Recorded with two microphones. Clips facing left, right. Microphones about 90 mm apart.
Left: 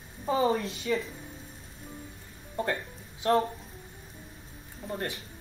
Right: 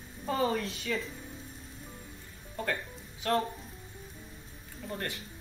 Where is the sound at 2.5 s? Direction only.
30° left (ahead or behind).